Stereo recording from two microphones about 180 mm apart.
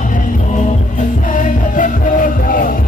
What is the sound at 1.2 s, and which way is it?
Music, 45° left (ahead or behind).